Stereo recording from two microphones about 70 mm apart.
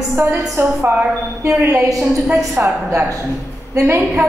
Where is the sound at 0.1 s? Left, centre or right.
Right.